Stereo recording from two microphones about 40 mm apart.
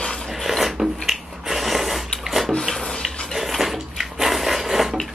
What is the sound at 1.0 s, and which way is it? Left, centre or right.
Snort, centre.